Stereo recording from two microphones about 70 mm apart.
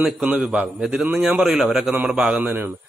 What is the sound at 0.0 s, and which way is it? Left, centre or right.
A man's voice, right.